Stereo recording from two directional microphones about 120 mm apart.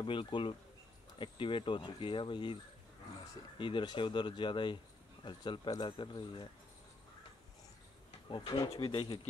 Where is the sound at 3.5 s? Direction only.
45° left (ahead or behind).